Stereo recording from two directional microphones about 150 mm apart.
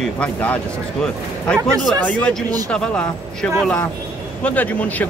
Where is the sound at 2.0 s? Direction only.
10° left (ahead or behind).